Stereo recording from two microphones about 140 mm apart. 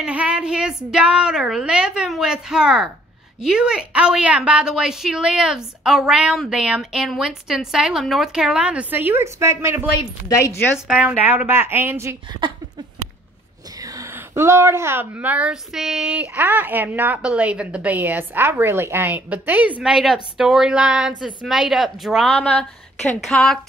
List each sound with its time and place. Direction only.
0.0 s a woman's voice: 10° right (ahead or behind)
10.2 s a woman's voice: 20° left (ahead or behind)
10.9 s a woman's voice: 10° right (ahead or behind)
12.4 s a sound: 35° right (ahead or behind)
13.7 s a woman's voice: 25° right (ahead or behind); by 23.6 s 5° left (ahead or behind)